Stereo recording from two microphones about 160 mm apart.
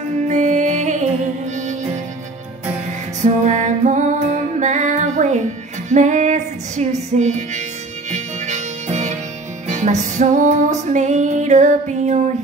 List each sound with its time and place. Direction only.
0.3 s music: 50° right (ahead or behind)
3.2 s music: 50° right (ahead or behind)